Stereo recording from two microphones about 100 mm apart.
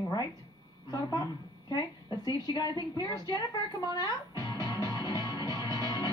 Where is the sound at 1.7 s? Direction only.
45° left (ahead or behind).